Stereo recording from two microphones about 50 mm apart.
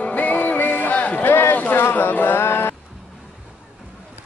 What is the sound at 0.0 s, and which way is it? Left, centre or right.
Music, left.